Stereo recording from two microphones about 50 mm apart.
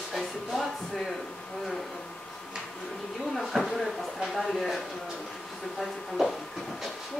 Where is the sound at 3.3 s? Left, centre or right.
Centre.